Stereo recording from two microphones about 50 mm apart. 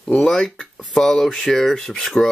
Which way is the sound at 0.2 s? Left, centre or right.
Centre.